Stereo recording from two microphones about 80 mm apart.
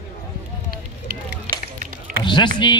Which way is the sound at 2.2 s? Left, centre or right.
Left.